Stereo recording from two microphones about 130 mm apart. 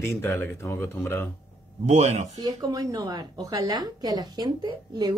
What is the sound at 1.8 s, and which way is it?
Speech, 55° right (ahead or behind).